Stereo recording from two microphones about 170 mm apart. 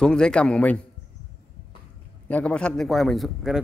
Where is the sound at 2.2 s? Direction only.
10° left (ahead or behind).